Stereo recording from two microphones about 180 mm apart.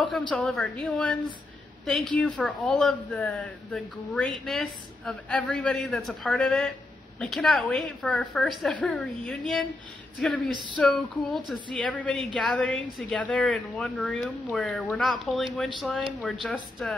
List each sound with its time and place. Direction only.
0.3 s speech: 5° left (ahead or behind)